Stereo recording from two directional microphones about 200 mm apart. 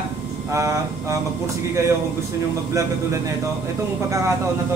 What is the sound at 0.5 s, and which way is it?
Speech, 15° right (ahead or behind).